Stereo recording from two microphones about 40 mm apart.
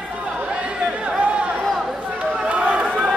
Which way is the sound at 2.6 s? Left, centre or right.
Right.